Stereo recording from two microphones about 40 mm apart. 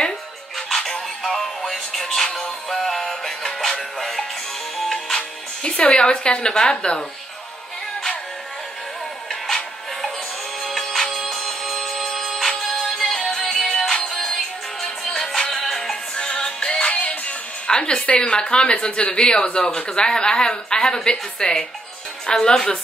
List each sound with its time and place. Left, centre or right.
0.6 s music: centre
2.2 s music: centre
2.7 s music: centre
5.6 s speech: left
10.6 s music: centre
16.2 s music: left
16.8 s music: left
17.6 s speech: left